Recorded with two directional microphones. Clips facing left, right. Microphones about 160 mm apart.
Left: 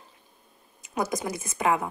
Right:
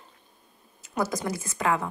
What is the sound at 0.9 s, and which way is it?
Speech, 15° left (ahead or behind).